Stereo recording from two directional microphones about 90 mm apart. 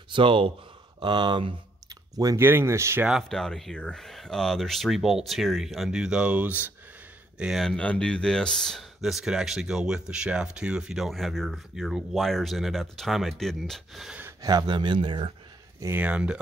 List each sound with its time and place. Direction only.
0.1 s speech: 70° right (ahead or behind)
0.9 s speech: 60° right (ahead or behind)
2.3 s speech: 25° right (ahead or behind)
3.3 s speech: 5° left (ahead or behind); by 6.7 s 15° right (ahead or behind)
7.3 s speech: 5° right (ahead or behind)
7.6 s speech: 15° left (ahead or behind)
14.4 s speech: 55° right (ahead or behind)
16.0 s speech: 15° right (ahead or behind)